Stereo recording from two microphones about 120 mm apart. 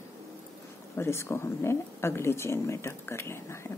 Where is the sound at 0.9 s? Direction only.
20° left (ahead or behind).